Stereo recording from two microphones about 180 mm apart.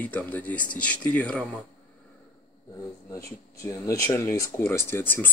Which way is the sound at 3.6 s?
15° left (ahead or behind).